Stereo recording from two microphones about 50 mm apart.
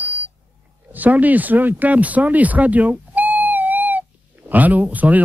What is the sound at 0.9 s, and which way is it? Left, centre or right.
Speech, right.